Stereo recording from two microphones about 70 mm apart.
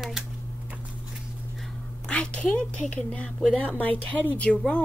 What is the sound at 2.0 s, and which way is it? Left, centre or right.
A woman's voice, centre.